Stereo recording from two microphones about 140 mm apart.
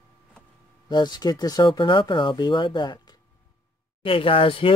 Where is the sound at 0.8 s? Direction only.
30° left (ahead or behind).